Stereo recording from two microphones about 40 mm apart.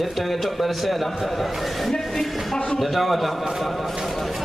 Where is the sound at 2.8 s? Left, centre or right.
Centre.